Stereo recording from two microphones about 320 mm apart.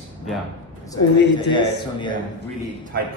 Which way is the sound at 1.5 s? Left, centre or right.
Centre.